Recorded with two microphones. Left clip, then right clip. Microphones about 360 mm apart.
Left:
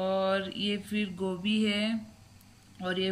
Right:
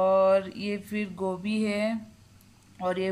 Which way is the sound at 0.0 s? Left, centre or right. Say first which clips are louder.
Right 7 dB; centre.